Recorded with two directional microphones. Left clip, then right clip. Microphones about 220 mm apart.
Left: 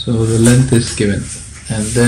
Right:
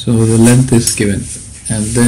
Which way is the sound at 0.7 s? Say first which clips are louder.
Right 2 dB; 20° right (ahead or behind).